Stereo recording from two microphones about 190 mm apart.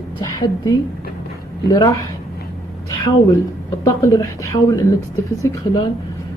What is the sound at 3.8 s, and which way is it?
A woman's voice, 15° left (ahead or behind).